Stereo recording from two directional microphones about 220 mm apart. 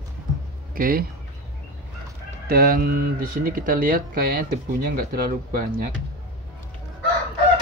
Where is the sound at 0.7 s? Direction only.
40° right (ahead or behind).